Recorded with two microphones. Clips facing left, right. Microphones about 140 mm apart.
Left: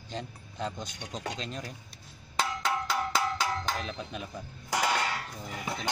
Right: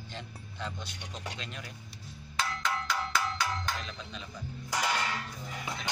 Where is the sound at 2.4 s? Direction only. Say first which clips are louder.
Left 3 dB; 30° left (ahead or behind).